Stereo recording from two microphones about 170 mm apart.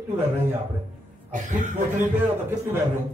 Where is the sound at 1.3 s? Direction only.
45° right (ahead or behind).